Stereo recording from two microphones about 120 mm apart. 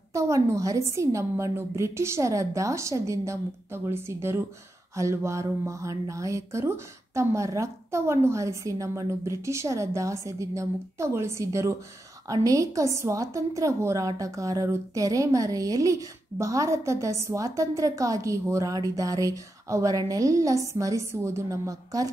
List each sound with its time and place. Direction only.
0.1 s a woman's voice: 25° right (ahead or behind)